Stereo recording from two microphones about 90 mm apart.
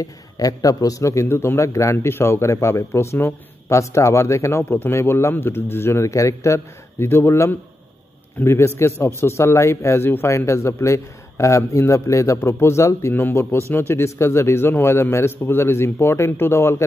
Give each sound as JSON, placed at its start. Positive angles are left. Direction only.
{"t": 0.0, "sound": "a man's voice", "side_deg": 40}